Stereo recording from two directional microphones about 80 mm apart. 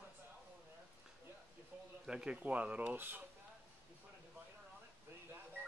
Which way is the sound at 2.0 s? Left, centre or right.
Centre.